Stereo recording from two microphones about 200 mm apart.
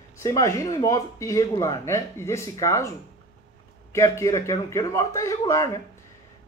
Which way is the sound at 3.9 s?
15° left (ahead or behind).